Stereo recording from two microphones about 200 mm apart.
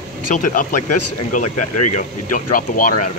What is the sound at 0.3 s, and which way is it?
Speech, 40° left (ahead or behind).